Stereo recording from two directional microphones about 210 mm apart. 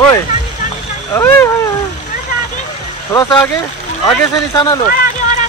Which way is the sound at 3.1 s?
15° left (ahead or behind).